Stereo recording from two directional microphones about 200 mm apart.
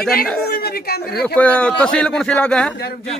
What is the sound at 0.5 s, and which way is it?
Speech, 50° left (ahead or behind).